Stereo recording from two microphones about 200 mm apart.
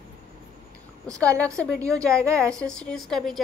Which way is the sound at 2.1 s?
15° right (ahead or behind).